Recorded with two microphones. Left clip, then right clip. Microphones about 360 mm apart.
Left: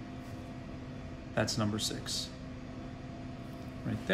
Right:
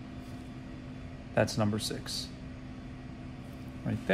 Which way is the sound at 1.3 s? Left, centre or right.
Centre.